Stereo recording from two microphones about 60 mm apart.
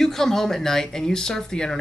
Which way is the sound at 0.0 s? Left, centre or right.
Centre.